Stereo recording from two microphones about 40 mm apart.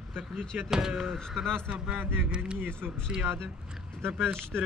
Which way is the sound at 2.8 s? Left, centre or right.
Right.